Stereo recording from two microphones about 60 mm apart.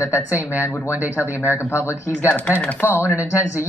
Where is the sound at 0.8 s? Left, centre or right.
Right.